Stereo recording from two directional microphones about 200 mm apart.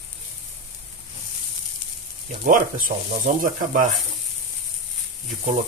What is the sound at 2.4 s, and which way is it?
Speech, 40° right (ahead or behind).